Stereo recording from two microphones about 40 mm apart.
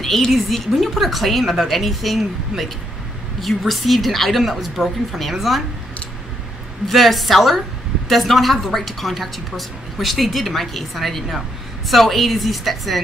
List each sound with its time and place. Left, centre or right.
0.0 s a woman's voice: centre
6.9 s a woman's voice: centre